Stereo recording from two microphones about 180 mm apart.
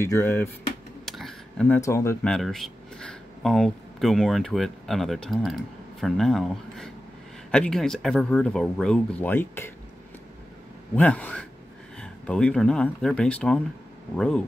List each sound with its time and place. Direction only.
0.0 s speech: 15° left (ahead or behind)
1.0 s a sound: centre (ahead or behind)
1.8 s speech: 15° left (ahead or behind)
2.3 s speech: centre (ahead or behind)
11.0 s speech: 10° left (ahead or behind)